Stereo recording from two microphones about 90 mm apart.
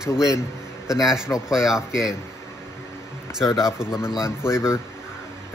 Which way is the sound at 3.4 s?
35° left (ahead or behind).